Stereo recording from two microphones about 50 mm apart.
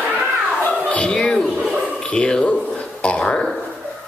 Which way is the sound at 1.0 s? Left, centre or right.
Centre.